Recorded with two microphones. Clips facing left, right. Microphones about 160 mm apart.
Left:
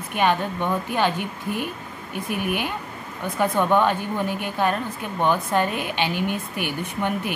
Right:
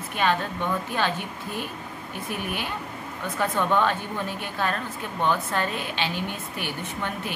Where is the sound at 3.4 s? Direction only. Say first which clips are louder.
Left 4 dB; 15° left (ahead or behind).